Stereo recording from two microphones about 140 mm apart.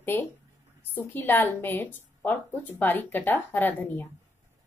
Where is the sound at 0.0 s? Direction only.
15° left (ahead or behind).